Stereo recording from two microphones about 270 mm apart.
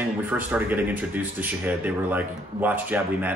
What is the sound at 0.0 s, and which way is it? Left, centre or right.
Speech, centre.